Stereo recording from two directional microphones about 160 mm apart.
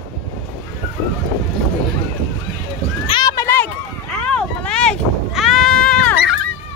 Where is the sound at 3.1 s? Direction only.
30° left (ahead or behind).